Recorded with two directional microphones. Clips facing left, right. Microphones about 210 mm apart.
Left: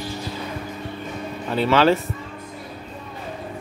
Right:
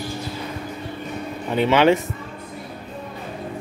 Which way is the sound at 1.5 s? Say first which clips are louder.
Right 1 dB; 15° right (ahead or behind).